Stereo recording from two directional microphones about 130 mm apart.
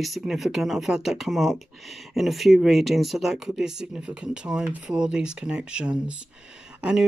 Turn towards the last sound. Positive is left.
turn(degrees=-5)  # may be behind; listen again after turning